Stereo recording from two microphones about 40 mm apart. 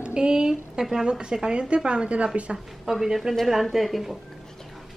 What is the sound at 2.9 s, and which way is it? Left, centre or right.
A woman's voice, centre.